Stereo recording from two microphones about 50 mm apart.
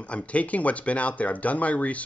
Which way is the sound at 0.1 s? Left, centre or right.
Left.